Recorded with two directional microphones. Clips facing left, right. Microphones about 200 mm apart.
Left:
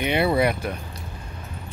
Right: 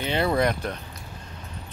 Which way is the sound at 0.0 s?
10° left (ahead or behind).